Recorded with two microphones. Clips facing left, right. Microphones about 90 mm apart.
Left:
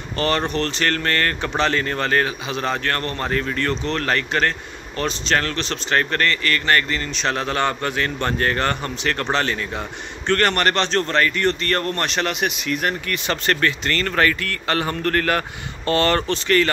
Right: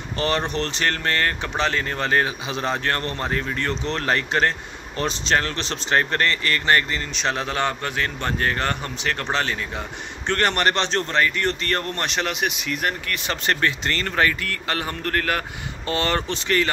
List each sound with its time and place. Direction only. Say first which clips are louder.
0.2 s a man's voice: left 2 dB; 20° right (ahead or behind); by 9.8 s 5° right (ahead or behind)
10.2 s a man's voice: left 2 dB; 15° right (ahead or behind)
13.5 s speech: left 1 dB; 20° right (ahead or behind)
14.1 s a man's voice: left 1 dB; 10° right (ahead or behind)